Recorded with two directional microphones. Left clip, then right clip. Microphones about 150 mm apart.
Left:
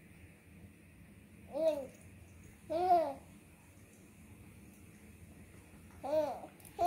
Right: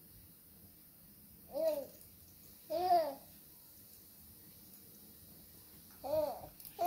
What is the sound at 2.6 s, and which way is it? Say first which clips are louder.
Babbling: left 2 dB; 15° left (ahead or behind).